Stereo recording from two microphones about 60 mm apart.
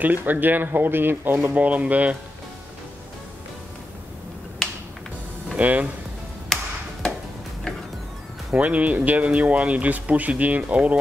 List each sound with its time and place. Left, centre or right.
0.0 s speech: right
5.6 s speech: right
6.5 s tick-tock: centre
8.5 s speech: right